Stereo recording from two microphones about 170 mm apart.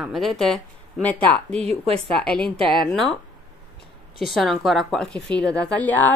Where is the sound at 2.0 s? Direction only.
5° left (ahead or behind).